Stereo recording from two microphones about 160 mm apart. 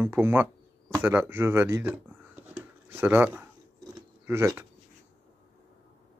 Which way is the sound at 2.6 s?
15° right (ahead or behind).